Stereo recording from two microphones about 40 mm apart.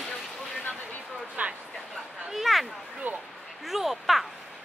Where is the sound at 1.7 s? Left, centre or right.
Centre.